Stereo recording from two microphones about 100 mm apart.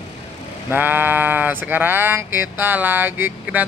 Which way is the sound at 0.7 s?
20° right (ahead or behind).